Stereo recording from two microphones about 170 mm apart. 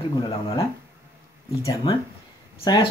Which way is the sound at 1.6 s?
20° left (ahead or behind).